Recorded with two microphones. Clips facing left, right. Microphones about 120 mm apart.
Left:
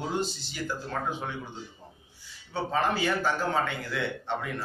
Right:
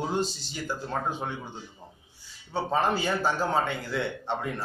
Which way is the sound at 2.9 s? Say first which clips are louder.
Even; 35° right (ahead or behind).